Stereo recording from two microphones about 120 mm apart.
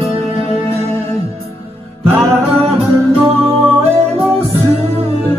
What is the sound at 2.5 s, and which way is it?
Music, 55° right (ahead or behind).